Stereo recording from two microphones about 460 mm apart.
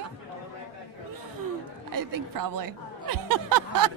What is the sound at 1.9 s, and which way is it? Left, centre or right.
Music, right.